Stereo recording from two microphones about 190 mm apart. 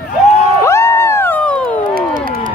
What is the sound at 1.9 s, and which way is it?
Crowd, 50° right (ahead or behind).